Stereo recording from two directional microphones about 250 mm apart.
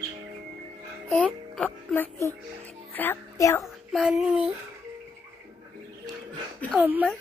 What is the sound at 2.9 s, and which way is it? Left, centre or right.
Speech, centre.